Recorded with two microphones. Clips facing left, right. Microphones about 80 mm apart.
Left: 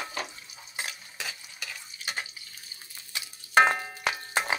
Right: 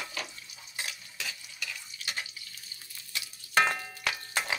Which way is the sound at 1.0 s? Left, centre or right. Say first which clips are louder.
Left 2 dB; left.